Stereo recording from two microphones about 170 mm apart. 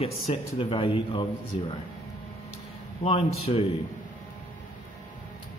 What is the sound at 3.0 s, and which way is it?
Speech, 35° left (ahead or behind).